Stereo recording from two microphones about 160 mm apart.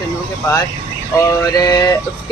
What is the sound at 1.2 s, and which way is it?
Speech, 20° left (ahead or behind).